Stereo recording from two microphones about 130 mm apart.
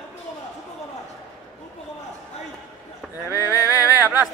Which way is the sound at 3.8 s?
15° right (ahead or behind).